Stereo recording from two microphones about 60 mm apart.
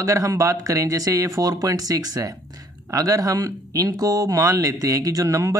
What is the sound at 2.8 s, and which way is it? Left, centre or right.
Speech, right.